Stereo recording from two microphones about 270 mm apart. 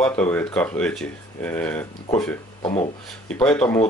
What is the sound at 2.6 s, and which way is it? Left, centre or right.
Speech, centre.